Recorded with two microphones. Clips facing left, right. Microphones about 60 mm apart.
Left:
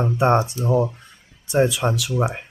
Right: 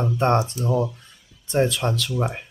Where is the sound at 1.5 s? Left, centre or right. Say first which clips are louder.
Left 2 dB; centre.